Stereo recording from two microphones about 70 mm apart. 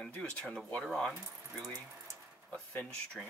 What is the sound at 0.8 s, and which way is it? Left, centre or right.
Speech, centre.